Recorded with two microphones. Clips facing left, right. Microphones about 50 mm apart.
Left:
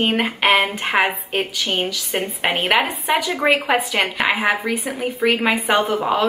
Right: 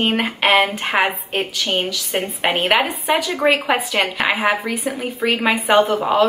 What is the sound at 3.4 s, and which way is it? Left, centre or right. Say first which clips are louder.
A woman's voice: right 1 dB; centre.